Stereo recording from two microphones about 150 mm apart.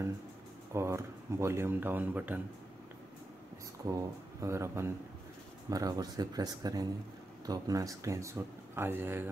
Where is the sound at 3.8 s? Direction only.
20° right (ahead or behind).